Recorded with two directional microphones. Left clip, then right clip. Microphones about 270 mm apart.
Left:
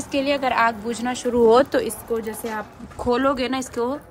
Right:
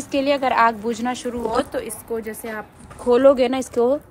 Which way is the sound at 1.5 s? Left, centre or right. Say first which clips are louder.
Left 6 dB; left.